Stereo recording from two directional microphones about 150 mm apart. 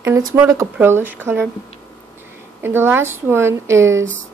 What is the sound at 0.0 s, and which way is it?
Speech, 20° right (ahead or behind).